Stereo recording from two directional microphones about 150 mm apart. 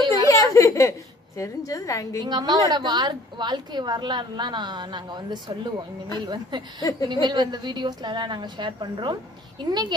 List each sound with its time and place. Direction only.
0.0 s a sound: 25° right (ahead or behind)
0.3 s a woman's voice: 20° left (ahead or behind)
2.2 s a woman's voice: 30° right (ahead or behind)